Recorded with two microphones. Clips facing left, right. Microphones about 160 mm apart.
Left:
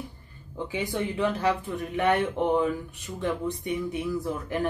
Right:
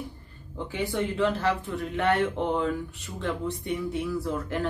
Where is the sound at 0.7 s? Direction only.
15° left (ahead or behind).